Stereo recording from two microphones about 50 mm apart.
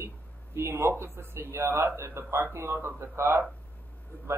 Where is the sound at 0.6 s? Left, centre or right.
Right.